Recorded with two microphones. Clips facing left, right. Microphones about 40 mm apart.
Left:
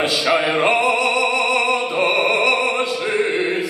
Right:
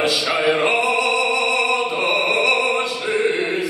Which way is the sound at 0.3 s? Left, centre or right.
Centre.